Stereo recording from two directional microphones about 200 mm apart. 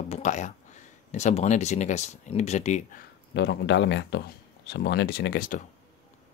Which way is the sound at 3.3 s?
60° left (ahead or behind).